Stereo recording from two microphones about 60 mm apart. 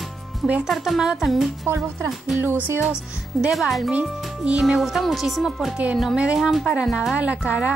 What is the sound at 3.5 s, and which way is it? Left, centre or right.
Speech, centre.